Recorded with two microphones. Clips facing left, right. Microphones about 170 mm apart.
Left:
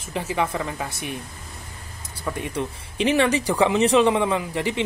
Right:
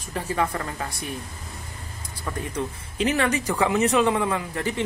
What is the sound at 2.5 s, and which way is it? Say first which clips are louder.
Speech: left 1 dB; 25° left (ahead or behind).